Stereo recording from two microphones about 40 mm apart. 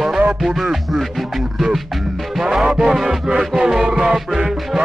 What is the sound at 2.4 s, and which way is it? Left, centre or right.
Music, centre.